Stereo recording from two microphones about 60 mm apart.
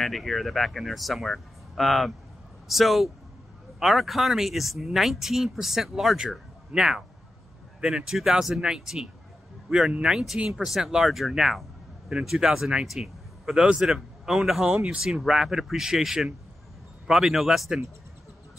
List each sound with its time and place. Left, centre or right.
0.0 s a man's voice: centre